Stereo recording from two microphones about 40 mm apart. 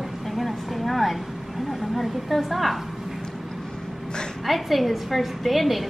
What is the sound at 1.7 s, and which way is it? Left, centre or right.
A woman's voice, centre.